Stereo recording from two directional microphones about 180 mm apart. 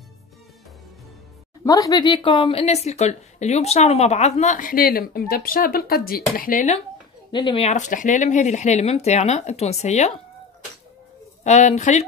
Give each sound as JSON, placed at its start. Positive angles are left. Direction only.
{"t": 1.6, "sound": "speech", "side_deg": 20}
{"t": 7.3, "sound": "speech", "side_deg": 30}
{"t": 11.4, "sound": "speech", "side_deg": 40}